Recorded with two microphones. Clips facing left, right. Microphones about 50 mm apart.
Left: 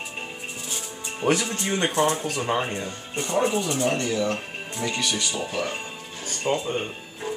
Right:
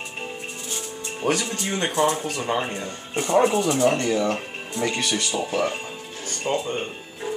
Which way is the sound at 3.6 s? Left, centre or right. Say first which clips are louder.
Right 4 dB; right.